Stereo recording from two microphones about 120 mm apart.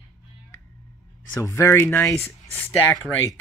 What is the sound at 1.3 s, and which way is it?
Speech, 20° left (ahead or behind).